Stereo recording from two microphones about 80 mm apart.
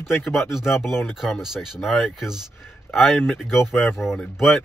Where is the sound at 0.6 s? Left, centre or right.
Left.